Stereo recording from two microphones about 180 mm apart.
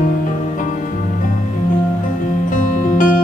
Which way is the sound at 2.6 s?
45° left (ahead or behind).